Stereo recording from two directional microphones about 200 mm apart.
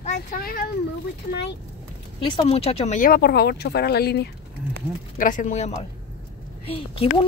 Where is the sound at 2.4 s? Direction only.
30° left (ahead or behind); by 4.3 s 55° left (ahead or behind).